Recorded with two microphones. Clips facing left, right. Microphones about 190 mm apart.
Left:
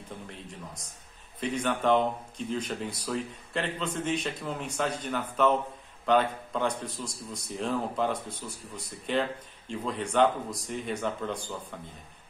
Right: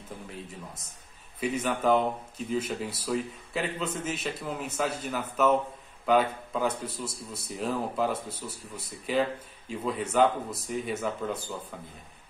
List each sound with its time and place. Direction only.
1.4 s speech: 5° right (ahead or behind)